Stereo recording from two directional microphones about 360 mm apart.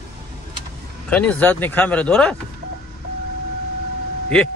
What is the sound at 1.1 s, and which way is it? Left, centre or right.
Speech, centre.